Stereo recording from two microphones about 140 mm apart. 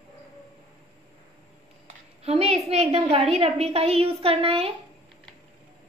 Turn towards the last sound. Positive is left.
turn(degrees=-40)  # may be behind; listen again after turning